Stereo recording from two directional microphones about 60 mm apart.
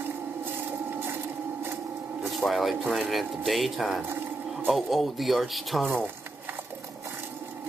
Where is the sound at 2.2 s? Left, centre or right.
Centre.